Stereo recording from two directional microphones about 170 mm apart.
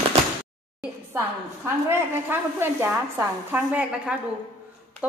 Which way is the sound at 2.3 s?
15° right (ahead or behind).